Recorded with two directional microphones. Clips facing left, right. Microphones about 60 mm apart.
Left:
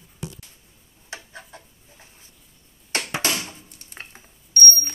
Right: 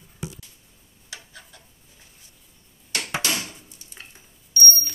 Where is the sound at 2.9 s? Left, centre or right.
Left.